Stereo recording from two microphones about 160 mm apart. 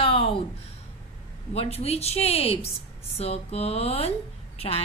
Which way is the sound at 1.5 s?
40° left (ahead or behind).